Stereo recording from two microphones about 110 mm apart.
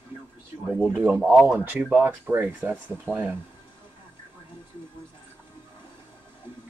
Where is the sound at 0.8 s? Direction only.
5° left (ahead or behind).